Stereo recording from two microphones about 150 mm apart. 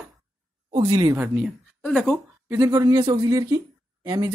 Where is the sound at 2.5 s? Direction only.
20° right (ahead or behind).